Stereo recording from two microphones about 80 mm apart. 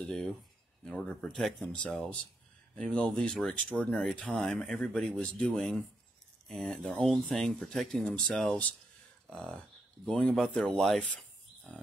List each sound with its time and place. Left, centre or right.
0.0 s speech: centre